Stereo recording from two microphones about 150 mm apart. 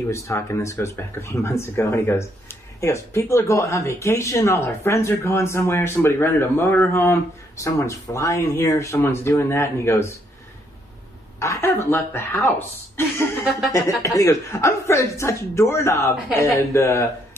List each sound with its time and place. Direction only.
0.1 s speech: 20° left (ahead or behind)
11.3 s a woman's voice: 20° left (ahead or behind)